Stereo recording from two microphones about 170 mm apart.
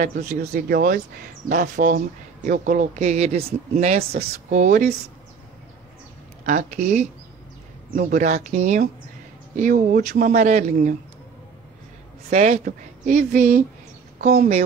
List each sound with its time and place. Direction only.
0.0 s speech: 50° right (ahead or behind)
0.7 s speech: 65° right (ahead or behind)
1.5 s speech: 55° right (ahead or behind)
6.4 s speech: 50° right (ahead or behind)
12.3 s speech: 40° right (ahead or behind)